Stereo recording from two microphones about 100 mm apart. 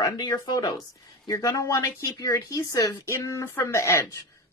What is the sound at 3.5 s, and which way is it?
Speech, 25° left (ahead or behind).